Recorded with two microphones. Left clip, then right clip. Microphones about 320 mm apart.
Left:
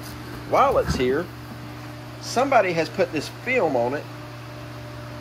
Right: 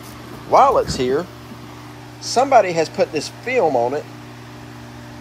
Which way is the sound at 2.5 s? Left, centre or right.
Centre.